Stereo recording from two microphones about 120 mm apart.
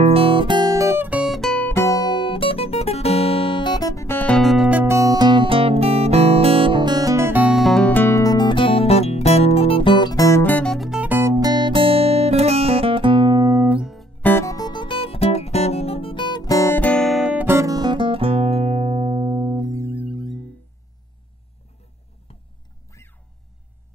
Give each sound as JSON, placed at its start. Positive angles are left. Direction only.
{"t": 0.0, "sound": "guitar", "side_deg": -55}
{"t": 1.2, "sound": "music", "side_deg": 0}
{"t": 1.7, "sound": "music", "side_deg": 25}
{"t": 4.2, "sound": "music", "side_deg": 5}
{"t": 4.6, "sound": "music", "side_deg": -15}
{"t": 7.5, "sound": "music", "side_deg": 5}
{"t": 7.9, "sound": "guitar", "side_deg": 20}
{"t": 10.4, "sound": "music", "side_deg": 15}
{"t": 10.7, "sound": "music", "side_deg": 0}
{"t": 11.0, "sound": "guitar", "side_deg": -15}
{"t": 13.7, "sound": "guitar", "side_deg": -5}
{"t": 14.2, "sound": "music", "side_deg": 20}
{"t": 17.0, "sound": "music", "side_deg": -5}
{"t": 19.3, "sound": "music", "side_deg": -30}